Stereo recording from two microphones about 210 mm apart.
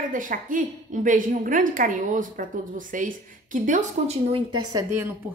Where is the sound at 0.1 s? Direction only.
40° right (ahead or behind).